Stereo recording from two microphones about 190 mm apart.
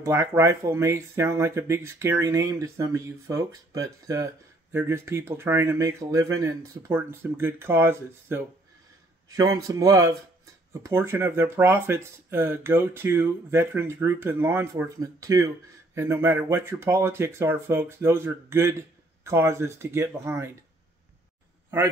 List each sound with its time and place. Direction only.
0.0 s speech: 15° right (ahead or behind)
9.7 s speech: 15° right (ahead or behind)